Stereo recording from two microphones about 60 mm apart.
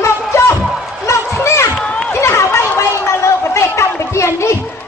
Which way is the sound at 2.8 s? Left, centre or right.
Left.